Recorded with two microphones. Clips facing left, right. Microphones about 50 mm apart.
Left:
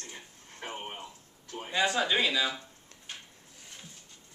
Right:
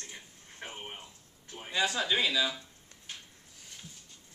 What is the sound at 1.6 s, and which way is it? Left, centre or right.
A man's voice, centre.